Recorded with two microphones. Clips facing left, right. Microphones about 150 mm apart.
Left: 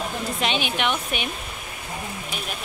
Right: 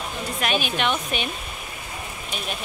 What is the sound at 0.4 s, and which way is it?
Speech, 20° left (ahead or behind).